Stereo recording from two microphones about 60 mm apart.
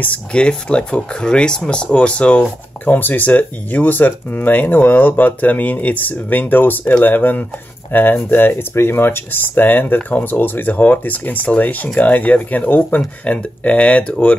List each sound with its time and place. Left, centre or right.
0.0 s speech: left
2.8 s speech: left
13.2 s speech: left